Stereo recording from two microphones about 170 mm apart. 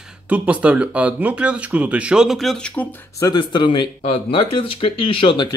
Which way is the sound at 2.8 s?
20° left (ahead or behind).